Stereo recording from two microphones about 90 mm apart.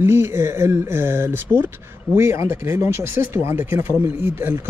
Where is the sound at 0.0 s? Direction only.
30° right (ahead or behind).